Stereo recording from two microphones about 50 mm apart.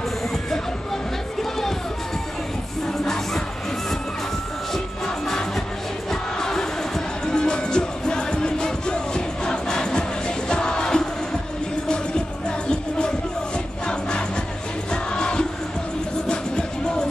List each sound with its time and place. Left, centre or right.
7.2 s music: centre
14.9 s music: centre